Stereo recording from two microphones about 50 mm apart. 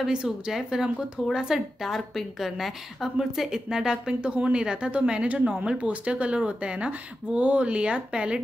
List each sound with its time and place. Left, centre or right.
0.5 s a woman's voice: centre